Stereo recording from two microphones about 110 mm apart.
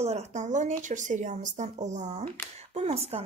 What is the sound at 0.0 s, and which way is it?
A woman's voice, 85° right.